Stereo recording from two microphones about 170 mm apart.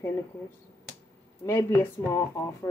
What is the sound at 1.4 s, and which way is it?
Speech, 15° left (ahead or behind).